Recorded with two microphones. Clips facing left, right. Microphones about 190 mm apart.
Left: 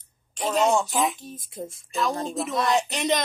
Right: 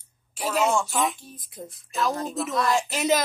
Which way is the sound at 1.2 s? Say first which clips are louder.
Left 5 dB; 25° left (ahead or behind).